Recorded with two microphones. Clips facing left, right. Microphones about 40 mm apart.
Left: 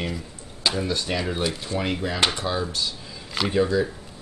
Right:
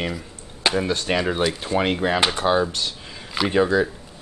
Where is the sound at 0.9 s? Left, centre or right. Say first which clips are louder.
Right 4 dB; right.